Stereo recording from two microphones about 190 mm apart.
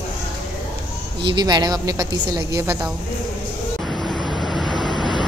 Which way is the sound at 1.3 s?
20° right (ahead or behind).